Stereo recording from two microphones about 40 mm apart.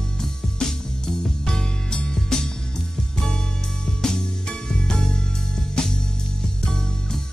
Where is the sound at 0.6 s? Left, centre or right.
Centre.